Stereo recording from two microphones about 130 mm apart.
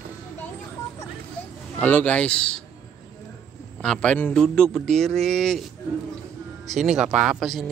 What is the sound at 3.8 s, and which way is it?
A man's voice, 5° left (ahead or behind).